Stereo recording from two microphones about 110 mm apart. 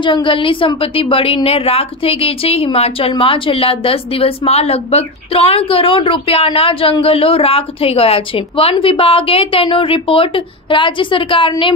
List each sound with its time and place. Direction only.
0.0 s a woman's voice: 50° left (ahead or behind)